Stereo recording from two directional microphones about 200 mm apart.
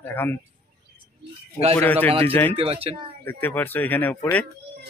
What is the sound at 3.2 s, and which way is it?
Speech, 10° left (ahead or behind).